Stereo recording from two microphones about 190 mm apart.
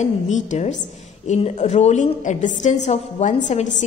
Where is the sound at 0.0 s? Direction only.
40° left (ahead or behind).